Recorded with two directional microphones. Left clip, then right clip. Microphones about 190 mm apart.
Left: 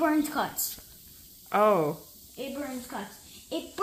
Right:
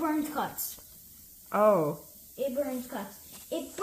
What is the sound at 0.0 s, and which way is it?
Speech, 45° left (ahead or behind).